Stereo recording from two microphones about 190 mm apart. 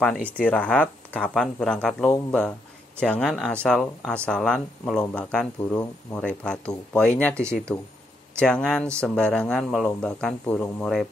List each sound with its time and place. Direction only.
0.0 s speech: 5° left (ahead or behind)